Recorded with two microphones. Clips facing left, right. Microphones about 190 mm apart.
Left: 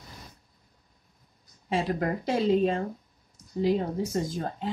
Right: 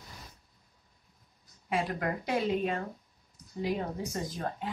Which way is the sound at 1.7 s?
25° left (ahead or behind).